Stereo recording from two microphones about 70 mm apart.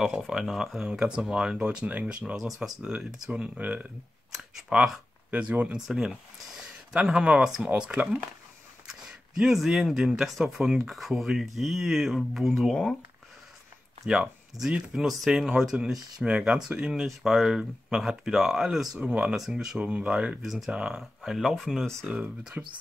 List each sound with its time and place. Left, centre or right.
0.0 s speech: centre; by 3.8 s right
4.6 s speech: centre
5.3 s speech: right
5.8 s speech: centre
9.4 s speech: centre
14.0 s speech: centre
18.9 s speech: centre
19.8 s speech: centre
20.4 s speech: centre
20.7 s speech: centre
21.0 s speech: centre
22.0 s speech: centre